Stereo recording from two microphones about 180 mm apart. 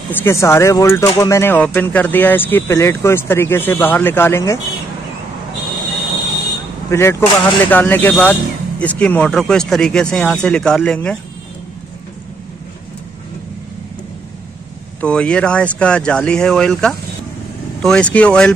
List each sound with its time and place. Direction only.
0.1 s speech: 15° left (ahead or behind)
6.9 s speech: 15° left (ahead or behind)
15.0 s speech: 5° left (ahead or behind)